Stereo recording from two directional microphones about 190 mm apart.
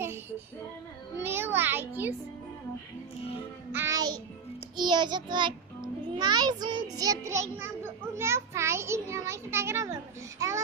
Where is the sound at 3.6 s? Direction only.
15° right (ahead or behind).